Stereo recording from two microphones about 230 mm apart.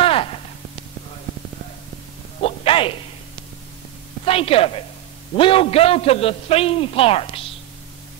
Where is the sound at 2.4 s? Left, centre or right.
Left.